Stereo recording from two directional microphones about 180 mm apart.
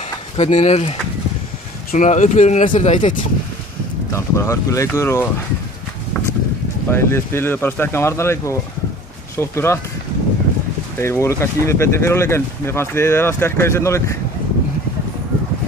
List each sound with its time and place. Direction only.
0.4 s speech: 30° left (ahead or behind)
4.1 s speech: 15° left (ahead or behind)
6.9 s speech: 15° left (ahead or behind)
11.0 s speech: 15° left (ahead or behind)